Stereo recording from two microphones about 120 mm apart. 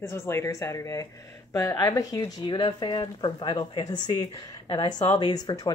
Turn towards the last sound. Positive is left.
turn(degrees=35)  # may be behind; listen again after turning